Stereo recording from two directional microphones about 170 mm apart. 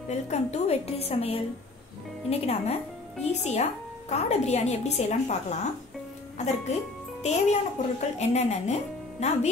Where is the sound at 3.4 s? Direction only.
40° left (ahead or behind).